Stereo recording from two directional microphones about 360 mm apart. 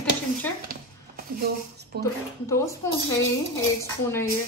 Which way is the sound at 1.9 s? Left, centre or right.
Right.